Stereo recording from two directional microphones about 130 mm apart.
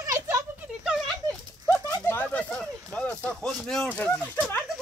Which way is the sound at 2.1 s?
10° left (ahead or behind).